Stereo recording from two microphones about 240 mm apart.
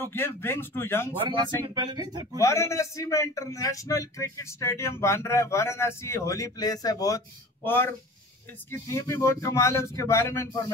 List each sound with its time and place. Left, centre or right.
0.0 s speech: centre
1.2 s speech: centre
2.3 s speech: centre